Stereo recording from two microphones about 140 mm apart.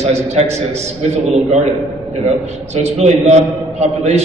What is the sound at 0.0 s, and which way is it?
Speech, 50° right (ahead or behind).